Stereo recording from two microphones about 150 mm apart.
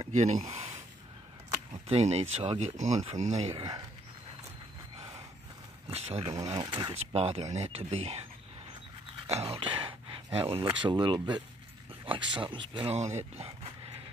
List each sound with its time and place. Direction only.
0.0 s speech: 50° right (ahead or behind)
1.9 s speech: 45° right (ahead or behind)
3.5 s speech: 30° right (ahead or behind)
5.9 s a sound: 40° right (ahead or behind)
6.3 s speech: 25° right (ahead or behind)
7.1 s speech: 40° right (ahead or behind)
9.3 s a sound: 40° right (ahead or behind)
10.8 s speech: 30° right (ahead or behind)
12.9 s speech: 50° right (ahead or behind)